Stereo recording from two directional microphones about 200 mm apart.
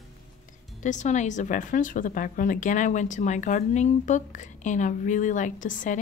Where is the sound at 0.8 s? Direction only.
40° left (ahead or behind).